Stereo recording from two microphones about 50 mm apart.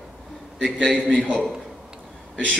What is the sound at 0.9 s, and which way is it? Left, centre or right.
Speech, centre.